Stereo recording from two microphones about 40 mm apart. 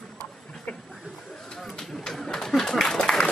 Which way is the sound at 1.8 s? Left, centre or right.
Centre.